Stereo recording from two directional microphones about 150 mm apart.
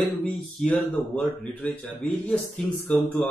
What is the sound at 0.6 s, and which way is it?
Speech, centre (ahead or behind).